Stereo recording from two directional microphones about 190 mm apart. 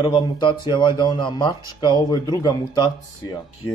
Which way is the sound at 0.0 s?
25° left (ahead or behind).